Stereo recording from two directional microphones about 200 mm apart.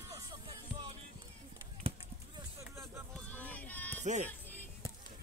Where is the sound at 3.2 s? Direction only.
10° left (ahead or behind).